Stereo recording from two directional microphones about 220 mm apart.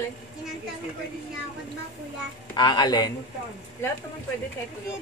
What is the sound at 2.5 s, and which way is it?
Speech, 20° left (ahead or behind).